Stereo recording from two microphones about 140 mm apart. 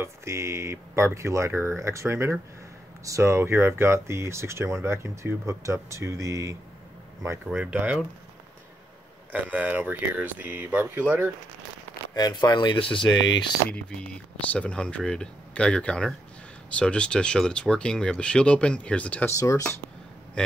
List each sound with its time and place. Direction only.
0.0 s speech: 20° right (ahead or behind)
7.5 s speech: 10° right (ahead or behind)
9.3 s speech: 10° right (ahead or behind)
12.1 s speech: 30° left (ahead or behind)
13.7 s speech: 10° left (ahead or behind)
19.3 s speech: 20° left (ahead or behind)
20.4 s speech: 10° left (ahead or behind)